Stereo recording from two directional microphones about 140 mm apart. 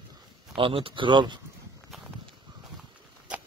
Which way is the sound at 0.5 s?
40° right (ahead or behind).